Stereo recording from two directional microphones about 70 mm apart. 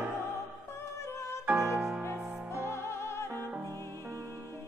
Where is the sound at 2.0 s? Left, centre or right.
Left.